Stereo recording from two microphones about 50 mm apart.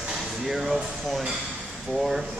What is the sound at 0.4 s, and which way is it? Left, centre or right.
Speech, centre.